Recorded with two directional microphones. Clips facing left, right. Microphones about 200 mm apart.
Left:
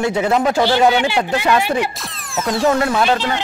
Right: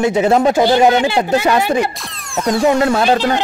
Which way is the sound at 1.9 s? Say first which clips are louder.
Right 2 dB; centre (ahead or behind).